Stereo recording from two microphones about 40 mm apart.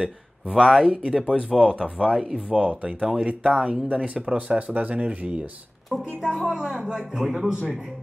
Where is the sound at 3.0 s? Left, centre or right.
Centre.